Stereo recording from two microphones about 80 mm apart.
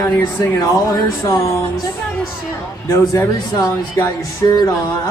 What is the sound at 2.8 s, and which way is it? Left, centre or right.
Speech, left.